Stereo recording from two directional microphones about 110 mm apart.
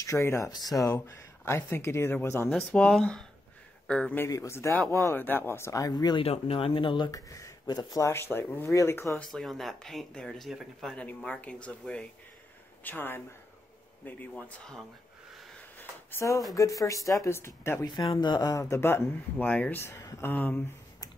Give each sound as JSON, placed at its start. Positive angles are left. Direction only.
{"t": 0.0, "sound": "speech", "side_deg": 30}
{"t": 2.5, "sound": "a man's voice", "side_deg": 10}
{"t": 4.3, "sound": "speech", "side_deg": 25}
{"t": 6.1, "sound": "speech", "side_deg": 65}
{"t": 7.1, "sound": "speech", "side_deg": 30}
{"t": 9.3, "sound": "speech", "side_deg": 0}
{"t": 14.0, "sound": "speech", "side_deg": 10}
{"t": 15.8, "sound": "a sound", "side_deg": 25}
{"t": 16.5, "sound": "speech", "side_deg": 30}
{"t": 17.8, "sound": "speech", "side_deg": 40}
{"t": 18.6, "sound": "speech", "side_deg": 25}
{"t": 20.2, "sound": "speech", "side_deg": 15}